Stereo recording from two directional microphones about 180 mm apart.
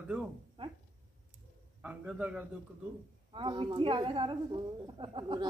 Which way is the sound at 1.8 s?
5° right (ahead or behind).